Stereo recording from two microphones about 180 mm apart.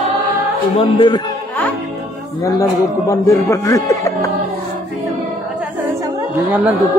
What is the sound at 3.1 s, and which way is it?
A man's voice, 15° left (ahead or behind).